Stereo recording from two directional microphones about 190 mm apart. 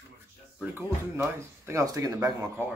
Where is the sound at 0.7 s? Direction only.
15° right (ahead or behind).